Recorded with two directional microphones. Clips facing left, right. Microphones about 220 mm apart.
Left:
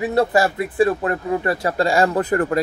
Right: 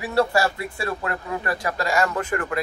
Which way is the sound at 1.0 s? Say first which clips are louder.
Left 7 dB; 30° left (ahead or behind).